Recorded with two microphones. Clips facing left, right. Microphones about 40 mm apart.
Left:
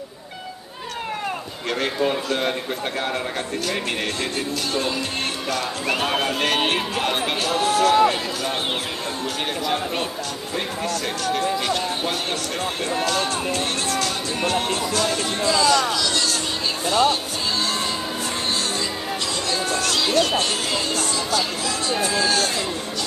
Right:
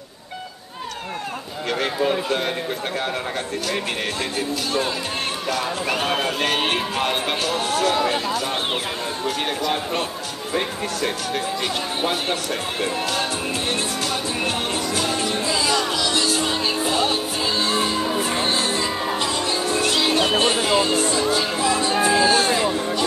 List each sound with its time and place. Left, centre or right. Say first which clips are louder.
1.7 s speech: right 1 dB; centre
4.4 s speech: right 3 dB; centre
9.2 s speech: right 3 dB; centre
11.2 s speech: left 3 dB; centre
14.4 s music: left 1 dB; centre
19.8 s speech: right 1 dB; centre